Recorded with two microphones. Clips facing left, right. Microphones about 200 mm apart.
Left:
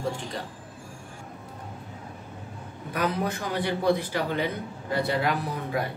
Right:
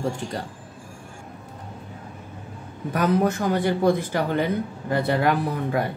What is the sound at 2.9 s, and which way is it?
Speech, 45° right (ahead or behind).